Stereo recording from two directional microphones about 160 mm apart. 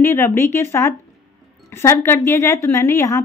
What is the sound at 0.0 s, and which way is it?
A woman's voice, 15° left (ahead or behind).